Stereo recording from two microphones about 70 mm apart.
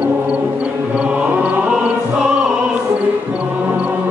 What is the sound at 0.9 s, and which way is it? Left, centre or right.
Music, centre.